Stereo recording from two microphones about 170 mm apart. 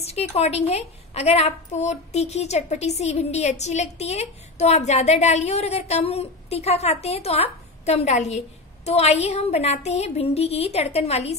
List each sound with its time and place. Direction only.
0.0 s a woman's voice: 40° left (ahead or behind)